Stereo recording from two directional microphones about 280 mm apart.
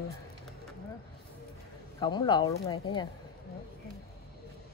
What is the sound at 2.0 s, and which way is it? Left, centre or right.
Speech, centre.